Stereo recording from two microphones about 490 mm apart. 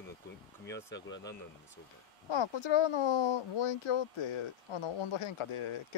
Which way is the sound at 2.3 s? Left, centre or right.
Left.